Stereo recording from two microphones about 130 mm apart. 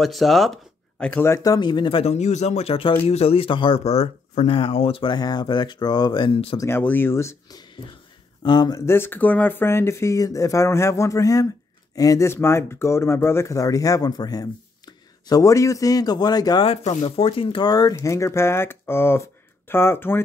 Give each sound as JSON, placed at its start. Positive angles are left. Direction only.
{"t": 0.0, "sound": "speech", "side_deg": 0}
{"t": 1.2, "sound": "speech", "side_deg": 25}
{"t": 3.8, "sound": "speech", "side_deg": 55}
{"t": 6.6, "sound": "speech", "side_deg": 15}
{"t": 8.4, "sound": "speech", "side_deg": 35}
{"t": 8.8, "sound": "speech", "side_deg": 20}
{"t": 16.6, "sound": "speech", "side_deg": 50}